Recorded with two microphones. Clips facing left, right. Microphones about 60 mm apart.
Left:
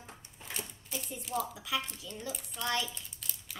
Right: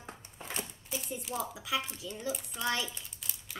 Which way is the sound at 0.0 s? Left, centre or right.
Right.